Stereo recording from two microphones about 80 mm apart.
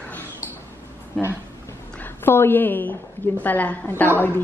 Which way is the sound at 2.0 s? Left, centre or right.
Left.